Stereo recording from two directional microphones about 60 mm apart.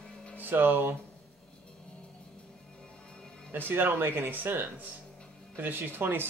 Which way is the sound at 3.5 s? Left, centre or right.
Right.